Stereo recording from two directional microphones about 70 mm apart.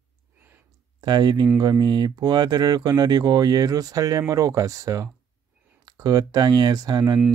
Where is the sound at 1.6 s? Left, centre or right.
Right.